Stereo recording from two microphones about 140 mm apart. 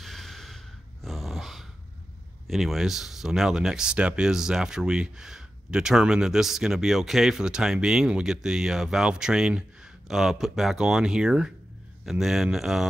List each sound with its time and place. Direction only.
0.0 s snort: centre (ahead or behind)
1.0 s dog: centre (ahead or behind)
2.4 s speech: centre (ahead or behind)